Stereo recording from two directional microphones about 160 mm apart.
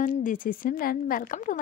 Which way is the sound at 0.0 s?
55° left (ahead or behind).